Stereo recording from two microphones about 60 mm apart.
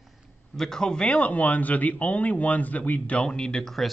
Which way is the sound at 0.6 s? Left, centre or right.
Centre.